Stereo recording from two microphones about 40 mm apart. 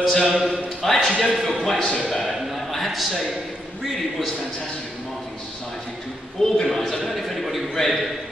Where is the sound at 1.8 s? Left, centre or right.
Centre.